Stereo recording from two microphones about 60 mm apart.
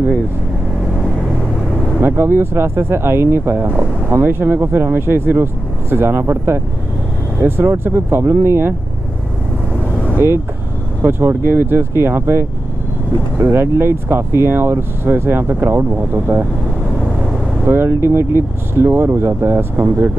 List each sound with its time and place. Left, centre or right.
2.0 s speech: right
7.6 s speech: right
11.0 s speech: right
17.6 s speech: right